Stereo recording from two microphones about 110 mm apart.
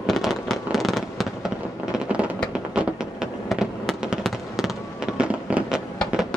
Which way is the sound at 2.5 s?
10° right (ahead or behind).